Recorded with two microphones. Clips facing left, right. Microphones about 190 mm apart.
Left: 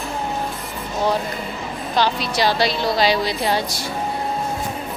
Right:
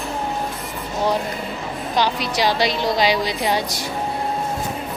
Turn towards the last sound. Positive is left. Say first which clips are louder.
# even
turn(degrees=-15)  # may be behind; listen again after turning